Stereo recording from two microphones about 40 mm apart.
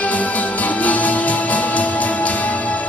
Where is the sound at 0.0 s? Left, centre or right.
Left.